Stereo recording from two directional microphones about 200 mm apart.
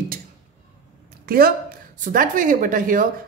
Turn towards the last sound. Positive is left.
turn(degrees=-40)  # may be behind; listen again after turning